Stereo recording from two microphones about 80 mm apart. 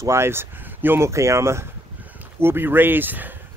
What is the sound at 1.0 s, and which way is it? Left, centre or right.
Speech, right.